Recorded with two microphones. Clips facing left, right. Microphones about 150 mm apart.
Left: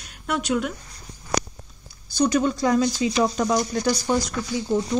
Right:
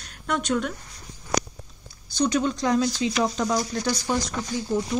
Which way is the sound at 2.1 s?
5° left (ahead or behind).